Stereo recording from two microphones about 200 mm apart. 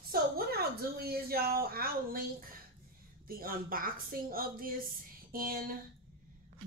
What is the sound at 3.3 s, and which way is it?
A woman's voice, 45° right (ahead or behind).